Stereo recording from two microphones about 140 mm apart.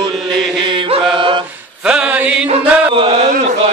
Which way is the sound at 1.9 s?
10° right (ahead or behind).